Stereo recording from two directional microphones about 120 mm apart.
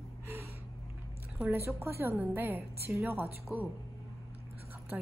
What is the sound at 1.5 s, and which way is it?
A woman's voice, 20° right (ahead or behind).